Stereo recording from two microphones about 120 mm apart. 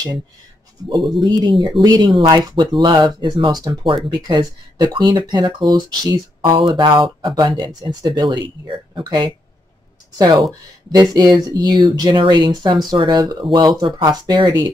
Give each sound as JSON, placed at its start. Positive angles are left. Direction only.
{"t": 0.8, "sound": "speech", "side_deg": -40}